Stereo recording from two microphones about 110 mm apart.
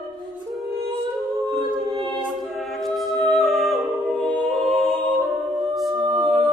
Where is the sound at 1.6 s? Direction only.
45° right (ahead or behind).